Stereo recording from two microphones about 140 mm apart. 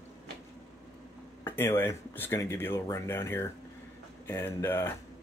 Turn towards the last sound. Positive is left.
turn(degrees=15)  # may be behind; listen again after turning